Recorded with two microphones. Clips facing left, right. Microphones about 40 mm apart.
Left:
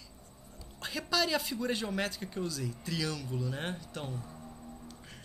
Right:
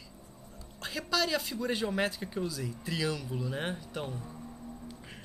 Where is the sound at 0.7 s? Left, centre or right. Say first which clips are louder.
Even; centre.